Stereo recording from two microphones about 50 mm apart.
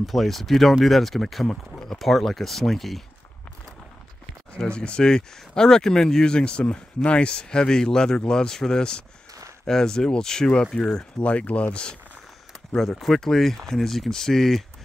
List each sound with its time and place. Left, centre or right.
0.0 s speech: centre
4.6 s speech: left
12.7 s speech: centre